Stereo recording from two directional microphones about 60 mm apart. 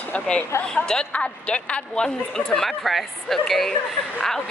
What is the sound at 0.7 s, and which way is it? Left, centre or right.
A woman's voice, centre.